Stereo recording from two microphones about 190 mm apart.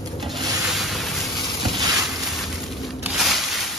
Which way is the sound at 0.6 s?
Centre (ahead or behind).